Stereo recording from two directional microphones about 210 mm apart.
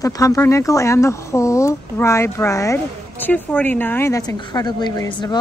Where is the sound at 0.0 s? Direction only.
15° left (ahead or behind).